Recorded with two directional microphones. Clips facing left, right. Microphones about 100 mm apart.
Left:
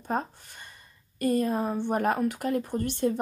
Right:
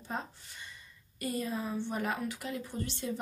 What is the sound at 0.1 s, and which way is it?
A woman's voice, 55° left (ahead or behind).